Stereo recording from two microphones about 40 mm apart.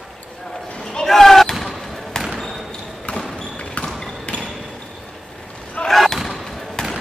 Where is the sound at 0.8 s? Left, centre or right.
Centre.